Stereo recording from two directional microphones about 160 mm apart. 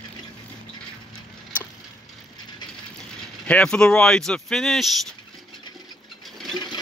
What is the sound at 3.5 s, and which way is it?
Speech, 5° left (ahead or behind).